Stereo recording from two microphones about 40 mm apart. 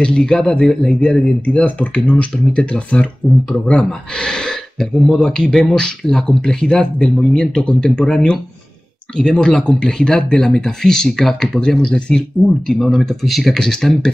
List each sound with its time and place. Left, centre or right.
0.0 s a man's voice: left
12.8 s speech: centre
13.6 s speech: centre